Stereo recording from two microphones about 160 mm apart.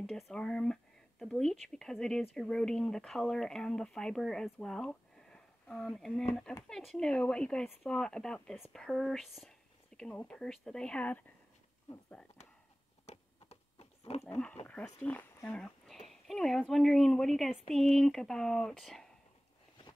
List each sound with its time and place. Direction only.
0.0 s speech: centre (ahead or behind)
13.0 s a sound: 40° left (ahead or behind)
14.3 s speech: 10° left (ahead or behind)